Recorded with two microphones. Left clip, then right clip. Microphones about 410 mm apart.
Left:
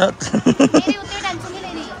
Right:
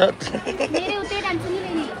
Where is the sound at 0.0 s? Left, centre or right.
Left.